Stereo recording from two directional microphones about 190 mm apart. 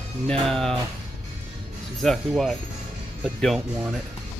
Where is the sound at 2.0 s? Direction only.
Centre (ahead or behind).